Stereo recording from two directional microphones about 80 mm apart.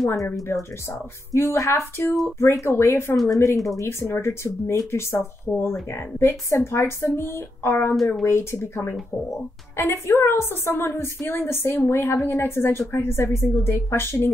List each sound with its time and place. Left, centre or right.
0.5 s a woman's voice: left
3.3 s a woman's voice: left
7.2 s a sound: left
8.3 s a woman's voice: left